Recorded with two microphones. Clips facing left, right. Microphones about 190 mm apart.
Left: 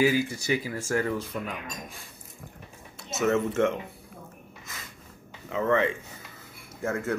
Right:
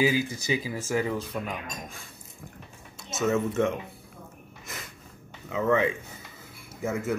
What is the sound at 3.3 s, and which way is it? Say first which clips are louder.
Speech: left 1 dB; 15° right (ahead or behind).